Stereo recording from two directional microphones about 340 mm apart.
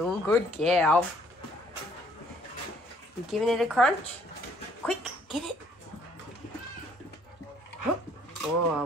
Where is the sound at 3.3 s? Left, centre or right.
Centre.